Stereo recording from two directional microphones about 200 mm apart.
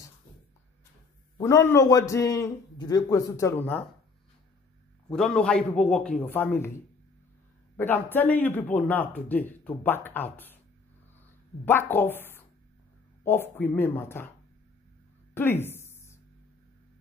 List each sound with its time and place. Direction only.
1.4 s speech: 15° left (ahead or behind)
5.1 s a man's voice: 5° left (ahead or behind)
7.7 s speech: 10° left (ahead or behind)
11.6 s speech: 10° left (ahead or behind)
15.3 s a sound: 10° left (ahead or behind)